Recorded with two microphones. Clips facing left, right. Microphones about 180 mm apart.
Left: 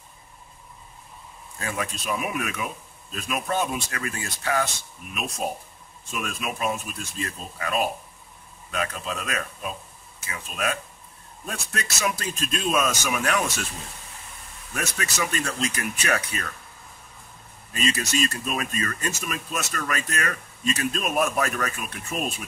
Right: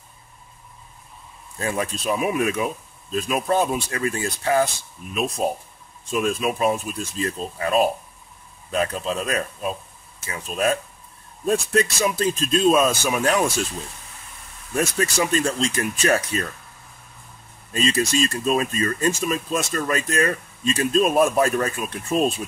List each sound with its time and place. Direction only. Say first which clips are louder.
1.6 s speech: right 6 dB; 35° right (ahead or behind)
14.7 s speech: right 8 dB; 35° right (ahead or behind)
17.7 s speech: right 5 dB; 30° right (ahead or behind)